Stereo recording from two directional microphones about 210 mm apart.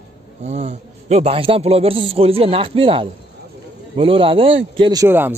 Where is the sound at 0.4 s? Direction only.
35° right (ahead or behind).